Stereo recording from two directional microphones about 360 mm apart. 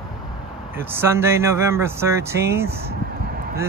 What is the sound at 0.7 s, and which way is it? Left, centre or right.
Speech, centre.